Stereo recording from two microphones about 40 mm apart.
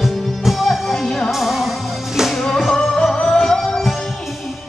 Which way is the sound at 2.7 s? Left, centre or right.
Centre.